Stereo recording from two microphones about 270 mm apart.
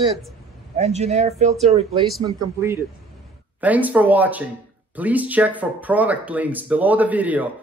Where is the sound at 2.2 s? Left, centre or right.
Centre.